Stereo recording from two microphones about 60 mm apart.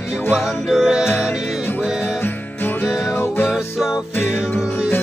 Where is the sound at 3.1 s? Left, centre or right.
Left.